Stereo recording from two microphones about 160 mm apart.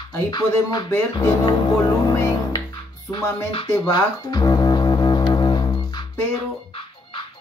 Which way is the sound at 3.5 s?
30° left (ahead or behind).